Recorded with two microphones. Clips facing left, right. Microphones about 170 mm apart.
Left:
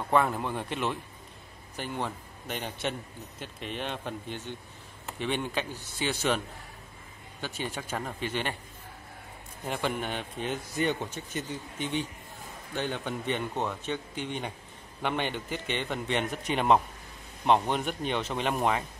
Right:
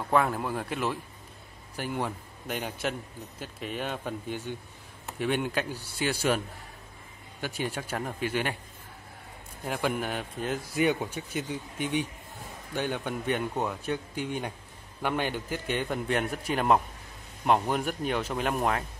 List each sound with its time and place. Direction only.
0.1 s a man's voice: centre (ahead or behind)
7.4 s a man's voice: 10° right (ahead or behind)
9.7 s a man's voice: 5° right (ahead or behind)